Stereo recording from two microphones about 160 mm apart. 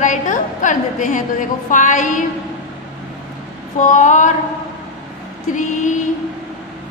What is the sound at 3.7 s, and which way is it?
Speech, 50° left (ahead or behind).